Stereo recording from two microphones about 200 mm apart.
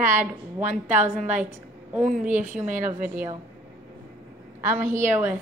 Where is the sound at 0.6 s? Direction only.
40° right (ahead or behind).